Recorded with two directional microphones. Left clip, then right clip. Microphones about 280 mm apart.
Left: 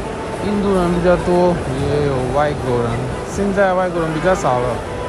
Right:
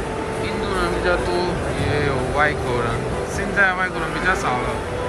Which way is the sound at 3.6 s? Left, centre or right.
Centre.